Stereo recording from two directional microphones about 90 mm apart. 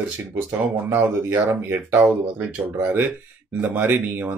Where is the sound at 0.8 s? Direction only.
25° right (ahead or behind).